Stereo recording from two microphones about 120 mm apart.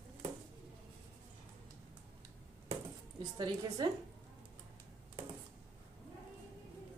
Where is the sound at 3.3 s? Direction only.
35° right (ahead or behind).